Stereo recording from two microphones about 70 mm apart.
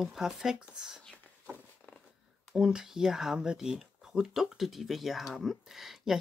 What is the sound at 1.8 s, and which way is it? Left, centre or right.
Purr, left.